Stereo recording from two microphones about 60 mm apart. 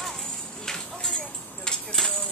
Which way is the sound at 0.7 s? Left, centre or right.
Centre.